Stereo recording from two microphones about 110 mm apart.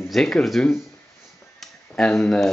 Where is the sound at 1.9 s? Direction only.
5° left (ahead or behind).